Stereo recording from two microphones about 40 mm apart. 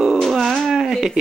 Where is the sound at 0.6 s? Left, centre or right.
Centre.